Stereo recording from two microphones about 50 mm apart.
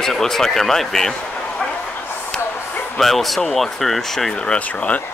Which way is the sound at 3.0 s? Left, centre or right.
Centre.